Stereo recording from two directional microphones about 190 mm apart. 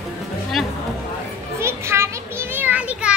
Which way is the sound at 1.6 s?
15° right (ahead or behind).